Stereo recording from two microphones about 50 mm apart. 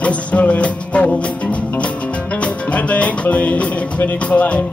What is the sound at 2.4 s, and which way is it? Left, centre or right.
Music, left.